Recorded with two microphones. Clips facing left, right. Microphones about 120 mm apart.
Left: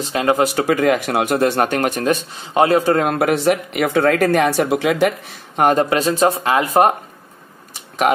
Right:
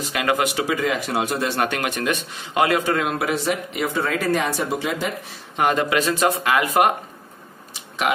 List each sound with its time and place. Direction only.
0.0 s speech: 30° left (ahead or behind)
0.6 s speech: 55° left (ahead or behind)
1.6 s speech: 40° left (ahead or behind)
3.1 s speech: 55° left (ahead or behind); by 5.1 s 75° left (ahead or behind)
5.6 s speech: 40° left (ahead or behind)